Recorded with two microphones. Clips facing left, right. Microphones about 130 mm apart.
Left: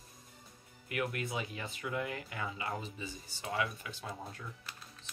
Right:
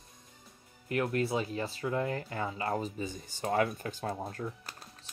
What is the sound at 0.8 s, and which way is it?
Speech, 35° right (ahead or behind).